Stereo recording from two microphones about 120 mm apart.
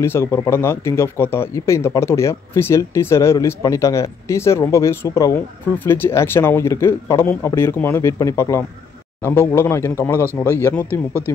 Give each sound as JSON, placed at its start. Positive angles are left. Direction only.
{"t": 0.0, "sound": "speech", "side_deg": 20}